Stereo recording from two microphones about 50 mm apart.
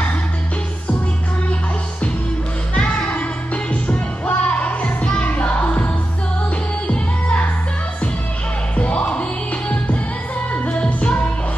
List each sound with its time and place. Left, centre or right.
2.7 s music: left
8.7 s music: left
10.5 s music: left